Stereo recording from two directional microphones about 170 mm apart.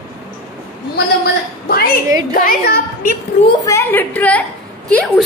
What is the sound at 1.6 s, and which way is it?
A woman's voice, 65° left (ahead or behind).